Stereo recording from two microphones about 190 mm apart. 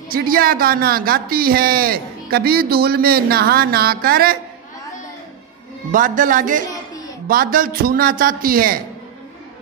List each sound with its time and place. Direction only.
0.1 s a man's voice: 50° right (ahead or behind)
5.9 s a man's voice: 45° right (ahead or behind)